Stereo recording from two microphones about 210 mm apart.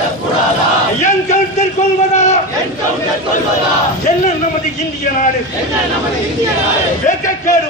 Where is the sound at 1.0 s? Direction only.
35° left (ahead or behind).